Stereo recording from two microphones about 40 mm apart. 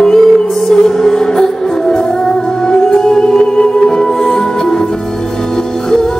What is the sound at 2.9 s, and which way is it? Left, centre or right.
Music, centre.